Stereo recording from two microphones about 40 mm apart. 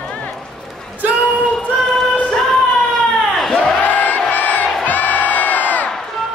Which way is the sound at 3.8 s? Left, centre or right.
Left.